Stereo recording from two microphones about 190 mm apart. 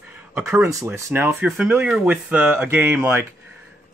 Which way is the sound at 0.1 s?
10° right (ahead or behind).